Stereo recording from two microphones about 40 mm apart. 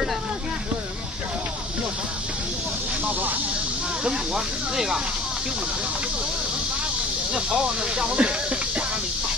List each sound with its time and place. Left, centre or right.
3.1 s snake: right
4.0 s speech: centre
7.3 s speech: right